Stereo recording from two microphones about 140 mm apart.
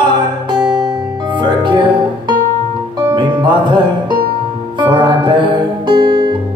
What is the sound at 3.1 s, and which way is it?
Music, 35° right (ahead or behind).